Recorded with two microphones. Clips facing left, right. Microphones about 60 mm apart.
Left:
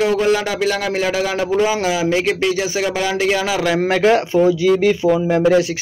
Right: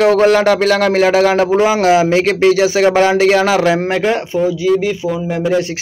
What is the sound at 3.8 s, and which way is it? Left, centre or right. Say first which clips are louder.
Speech: left 1 dB; centre.